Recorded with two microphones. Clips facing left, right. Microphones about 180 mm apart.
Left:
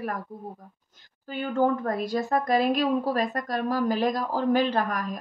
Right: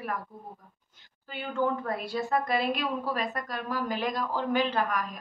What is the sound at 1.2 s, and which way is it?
A woman's voice, 40° left (ahead or behind).